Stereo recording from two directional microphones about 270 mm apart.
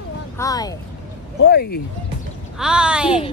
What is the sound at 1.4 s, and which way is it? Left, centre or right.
Speech, left.